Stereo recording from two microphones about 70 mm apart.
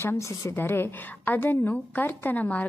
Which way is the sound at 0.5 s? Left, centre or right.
Left.